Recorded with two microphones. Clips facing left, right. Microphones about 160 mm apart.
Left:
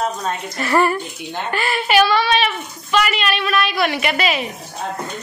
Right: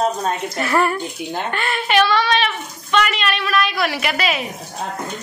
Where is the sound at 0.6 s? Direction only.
Centre (ahead or behind).